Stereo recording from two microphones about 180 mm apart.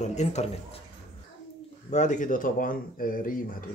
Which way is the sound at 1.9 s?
40° left (ahead or behind).